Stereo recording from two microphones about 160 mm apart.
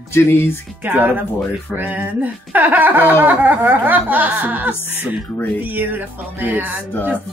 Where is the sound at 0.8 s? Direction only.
10° right (ahead or behind).